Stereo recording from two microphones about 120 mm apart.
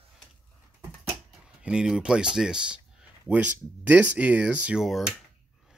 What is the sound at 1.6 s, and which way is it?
Speech, 5° right (ahead or behind).